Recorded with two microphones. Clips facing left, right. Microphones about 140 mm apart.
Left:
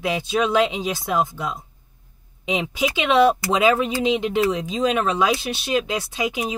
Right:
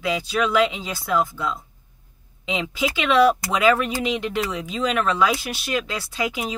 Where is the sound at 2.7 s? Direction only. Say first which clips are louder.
Left 1 dB; 20° left (ahead or behind).